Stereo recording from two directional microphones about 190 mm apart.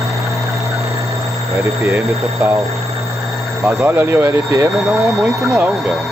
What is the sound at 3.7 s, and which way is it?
Speech, 15° right (ahead or behind).